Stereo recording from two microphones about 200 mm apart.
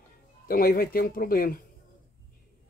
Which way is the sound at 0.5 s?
45° left (ahead or behind).